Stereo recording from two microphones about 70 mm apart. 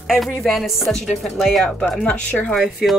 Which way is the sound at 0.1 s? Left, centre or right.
Centre.